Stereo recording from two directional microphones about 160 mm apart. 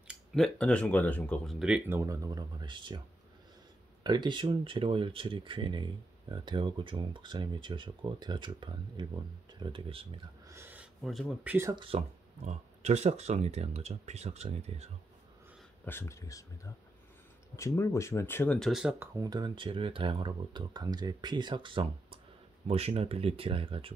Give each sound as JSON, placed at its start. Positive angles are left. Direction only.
{"t": 0.1, "sound": "speech", "side_deg": 0}
{"t": 1.9, "sound": "speech", "side_deg": -20}
{"t": 4.0, "sound": "speech", "side_deg": -25}
{"t": 10.4, "sound": "a sound", "side_deg": -15}
{"t": 11.1, "sound": "speech", "side_deg": 0}
{"t": 11.7, "sound": "speech", "side_deg": -35}
{"t": 12.4, "sound": "speech", "side_deg": -45}
{"t": 15.8, "sound": "speech", "side_deg": 15}
{"t": 18.7, "sound": "speech", "side_deg": -5}
{"t": 18.9, "sound": "speech", "side_deg": -25}